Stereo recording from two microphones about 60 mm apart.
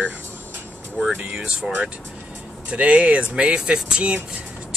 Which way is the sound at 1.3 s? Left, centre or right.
Centre.